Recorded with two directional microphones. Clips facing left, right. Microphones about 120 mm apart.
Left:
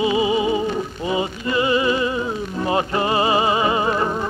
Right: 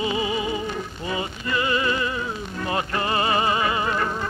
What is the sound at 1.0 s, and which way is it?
Music, 20° left (ahead or behind).